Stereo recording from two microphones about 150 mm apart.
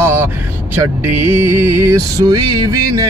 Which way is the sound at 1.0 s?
15° right (ahead or behind).